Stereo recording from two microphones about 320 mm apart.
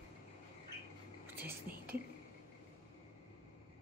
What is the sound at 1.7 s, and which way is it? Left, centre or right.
Speech, right.